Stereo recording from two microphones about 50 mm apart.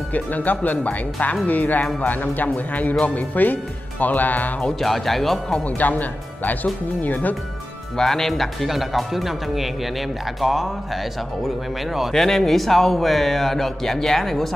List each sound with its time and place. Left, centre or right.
0.1 s speech: left
4.7 s speech: centre
5.8 s speech: left
8.0 s speech: centre